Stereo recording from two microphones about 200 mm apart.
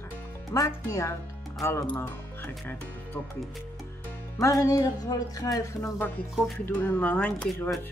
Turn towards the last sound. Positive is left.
turn(degrees=5)  # may be behind; listen again after turning